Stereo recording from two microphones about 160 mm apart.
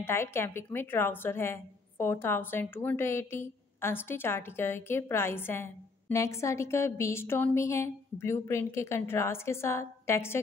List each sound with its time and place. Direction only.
0.0 s a woman's voice: 15° left (ahead or behind)